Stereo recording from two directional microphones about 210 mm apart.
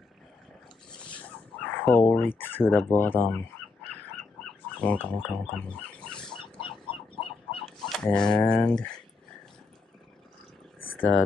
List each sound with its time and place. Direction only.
1.6 s speech: 10° left (ahead or behind)
4.7 s speech: 5° left (ahead or behind)
6.6 s chicken: 25° left (ahead or behind)
7.6 s speech: centre (ahead or behind)
11.0 s speech: 10° left (ahead or behind)